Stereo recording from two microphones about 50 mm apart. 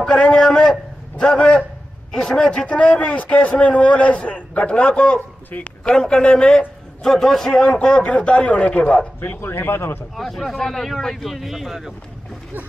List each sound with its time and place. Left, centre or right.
0.0 s a sound: centre
2.1 s a man's voice: centre
2.5 s a man's voice: left
9.2 s speech: left
9.8 s speech: left
10.1 s speech: centre